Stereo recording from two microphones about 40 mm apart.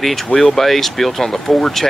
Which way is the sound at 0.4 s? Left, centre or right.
Centre.